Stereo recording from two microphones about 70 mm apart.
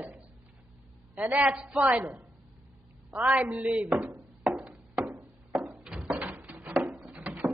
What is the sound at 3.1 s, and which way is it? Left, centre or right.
Speech, right.